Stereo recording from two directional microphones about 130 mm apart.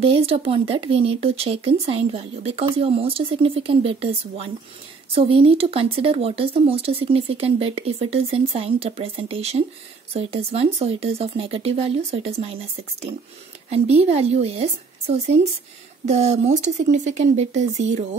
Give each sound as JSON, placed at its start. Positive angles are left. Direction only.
{"t": 0.0, "sound": "speech", "side_deg": -45}